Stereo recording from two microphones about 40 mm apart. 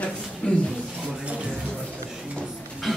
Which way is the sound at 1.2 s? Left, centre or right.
Right.